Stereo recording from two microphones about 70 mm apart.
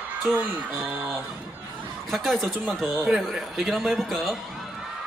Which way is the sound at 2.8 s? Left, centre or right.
Centre.